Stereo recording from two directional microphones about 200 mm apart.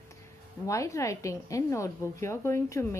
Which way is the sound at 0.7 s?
15° left (ahead or behind).